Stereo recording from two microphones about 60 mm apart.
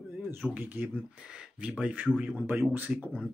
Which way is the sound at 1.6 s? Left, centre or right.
Centre.